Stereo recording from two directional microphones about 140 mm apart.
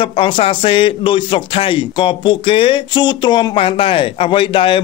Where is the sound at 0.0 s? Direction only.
40° left (ahead or behind).